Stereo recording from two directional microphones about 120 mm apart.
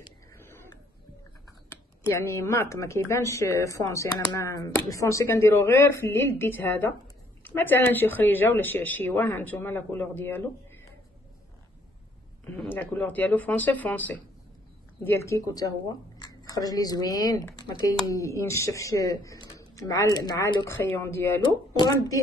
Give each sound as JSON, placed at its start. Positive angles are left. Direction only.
{"t": 1.7, "sound": "speech", "side_deg": 20}
{"t": 12.9, "sound": "speech", "side_deg": 15}
{"t": 21.7, "sound": "speech", "side_deg": 30}